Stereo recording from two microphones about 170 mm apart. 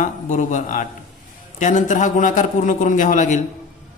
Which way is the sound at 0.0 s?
45° left (ahead or behind).